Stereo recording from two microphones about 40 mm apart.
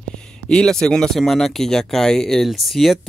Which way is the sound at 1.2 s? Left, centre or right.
Centre.